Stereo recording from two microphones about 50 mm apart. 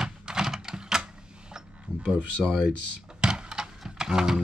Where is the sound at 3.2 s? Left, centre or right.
Centre.